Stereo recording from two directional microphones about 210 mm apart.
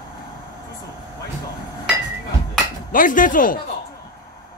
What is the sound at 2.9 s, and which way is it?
Speech, 40° left (ahead or behind).